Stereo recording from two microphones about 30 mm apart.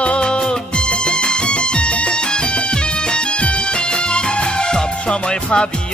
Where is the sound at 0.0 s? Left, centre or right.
Left.